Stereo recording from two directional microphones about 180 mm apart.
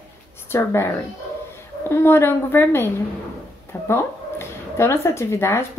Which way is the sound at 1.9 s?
15° left (ahead or behind).